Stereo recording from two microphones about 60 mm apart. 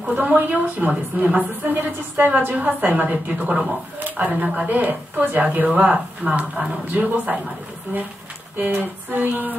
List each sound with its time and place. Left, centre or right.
0.0 s a woman's voice: right
3.4 s a woman's voice: centre
8.5 s a woman's voice: right